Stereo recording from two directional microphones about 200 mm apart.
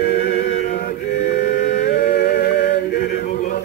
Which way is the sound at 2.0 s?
55° left (ahead or behind).